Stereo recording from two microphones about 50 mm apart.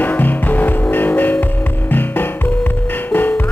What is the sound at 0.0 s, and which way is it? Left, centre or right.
Music, left.